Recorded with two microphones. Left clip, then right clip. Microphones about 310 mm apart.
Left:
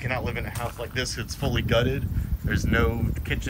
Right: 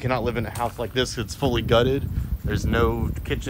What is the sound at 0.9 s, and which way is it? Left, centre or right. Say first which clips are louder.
Speech: right 4 dB; centre.